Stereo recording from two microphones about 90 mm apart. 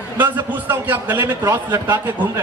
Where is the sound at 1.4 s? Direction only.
35° right (ahead or behind).